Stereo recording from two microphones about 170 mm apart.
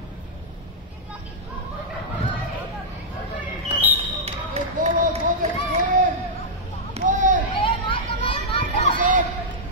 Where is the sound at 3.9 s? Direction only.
40° right (ahead or behind).